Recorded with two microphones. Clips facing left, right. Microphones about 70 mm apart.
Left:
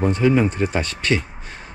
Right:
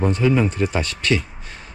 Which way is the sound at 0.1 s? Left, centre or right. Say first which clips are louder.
Left 1 dB; left.